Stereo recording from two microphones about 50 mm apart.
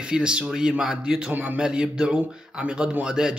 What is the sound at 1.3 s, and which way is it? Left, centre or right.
Speech, right.